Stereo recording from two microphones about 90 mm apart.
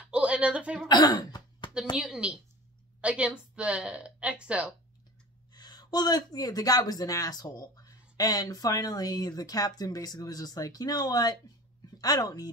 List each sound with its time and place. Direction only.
0.0 s a sound: 10° right (ahead or behind)
0.8 s throat clearing: 55° left (ahead or behind)
2.0 s a woman's voice: 10° right (ahead or behind)
5.5 s speech: 50° left (ahead or behind)